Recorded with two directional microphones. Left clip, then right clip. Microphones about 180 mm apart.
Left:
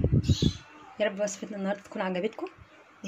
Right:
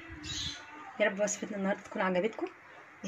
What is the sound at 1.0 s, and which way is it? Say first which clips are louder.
Speech: left 1 dB; 10° left (ahead or behind).